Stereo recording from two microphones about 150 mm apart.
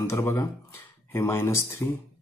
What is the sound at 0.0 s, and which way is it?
Speech, 20° left (ahead or behind).